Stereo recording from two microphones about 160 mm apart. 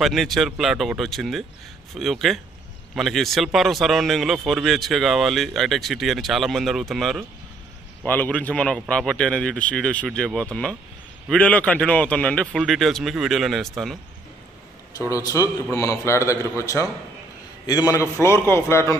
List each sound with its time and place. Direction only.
0.0 s speech: centre (ahead or behind)
15.0 s a man's voice: 20° left (ahead or behind)